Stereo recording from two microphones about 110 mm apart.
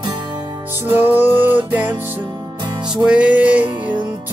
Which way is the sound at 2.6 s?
40° right (ahead or behind).